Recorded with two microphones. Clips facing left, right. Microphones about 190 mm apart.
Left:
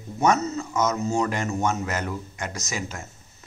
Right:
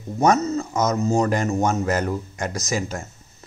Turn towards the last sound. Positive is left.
turn(degrees=-35)  # may be behind; listen again after turning